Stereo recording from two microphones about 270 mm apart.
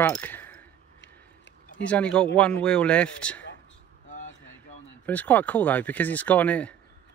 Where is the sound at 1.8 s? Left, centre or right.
Centre.